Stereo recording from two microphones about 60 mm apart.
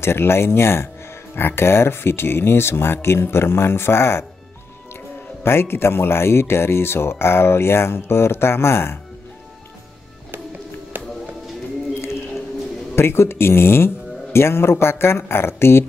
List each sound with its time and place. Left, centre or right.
0.0 s speech: left
5.4 s speech: left
10.9 s music: right
12.9 s speech: left